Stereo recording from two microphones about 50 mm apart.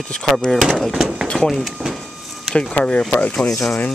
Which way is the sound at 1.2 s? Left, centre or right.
Centre.